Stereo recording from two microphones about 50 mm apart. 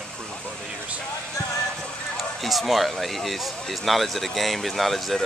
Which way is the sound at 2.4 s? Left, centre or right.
Centre.